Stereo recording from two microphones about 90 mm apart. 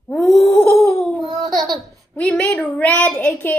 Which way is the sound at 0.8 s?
25° left (ahead or behind).